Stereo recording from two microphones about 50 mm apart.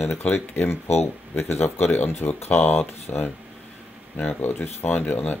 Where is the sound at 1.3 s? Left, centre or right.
Left.